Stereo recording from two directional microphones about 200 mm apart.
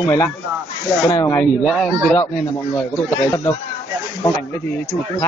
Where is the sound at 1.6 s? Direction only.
Centre (ahead or behind).